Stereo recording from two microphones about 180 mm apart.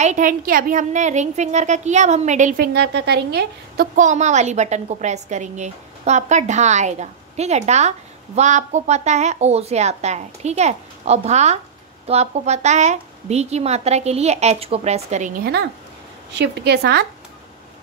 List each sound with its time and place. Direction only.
0.0 s a woman's voice: 45° right (ahead or behind); by 3.9 s 65° right (ahead or behind)
3.9 s a woman's voice: 40° right (ahead or behind)
16.3 s a woman's voice: 65° right (ahead or behind)